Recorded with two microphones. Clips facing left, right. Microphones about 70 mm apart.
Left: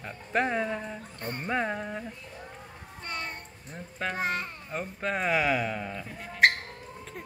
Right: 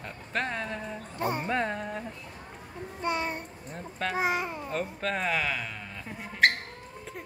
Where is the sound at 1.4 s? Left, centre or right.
Centre.